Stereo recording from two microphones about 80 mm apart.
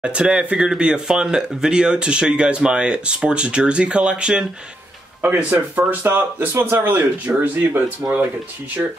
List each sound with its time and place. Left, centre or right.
0.0 s speech: centre
8.0 s speech: right